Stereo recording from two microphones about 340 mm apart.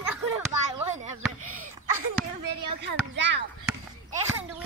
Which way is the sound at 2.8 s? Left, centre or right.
Right.